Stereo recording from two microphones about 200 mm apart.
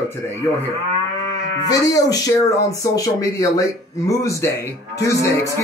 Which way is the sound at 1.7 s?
15° left (ahead or behind).